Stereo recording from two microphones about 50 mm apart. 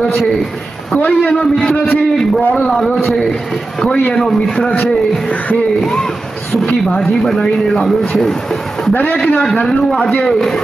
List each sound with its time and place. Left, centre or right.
0.9 s a man's voice: left
1.4 s a man's voice: centre
2.4 s a man's voice: left
3.8 s a man's voice: left
6.6 s a man's voice: centre
7.0 s a man's voice: centre
10.0 s a man's voice: centre